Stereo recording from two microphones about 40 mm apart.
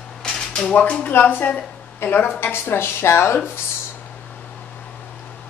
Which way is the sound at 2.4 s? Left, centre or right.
Left.